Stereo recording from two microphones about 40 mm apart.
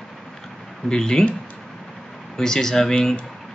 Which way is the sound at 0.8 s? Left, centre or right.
Centre.